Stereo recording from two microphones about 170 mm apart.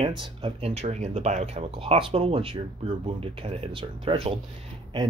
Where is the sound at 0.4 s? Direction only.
35° right (ahead or behind).